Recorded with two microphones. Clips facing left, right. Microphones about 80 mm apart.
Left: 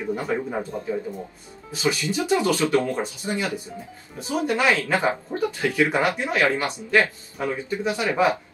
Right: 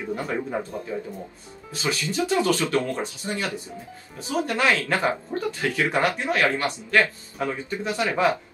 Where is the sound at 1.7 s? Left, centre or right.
Centre.